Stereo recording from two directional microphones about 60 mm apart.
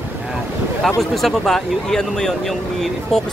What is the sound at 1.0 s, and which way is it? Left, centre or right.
Speech, centre.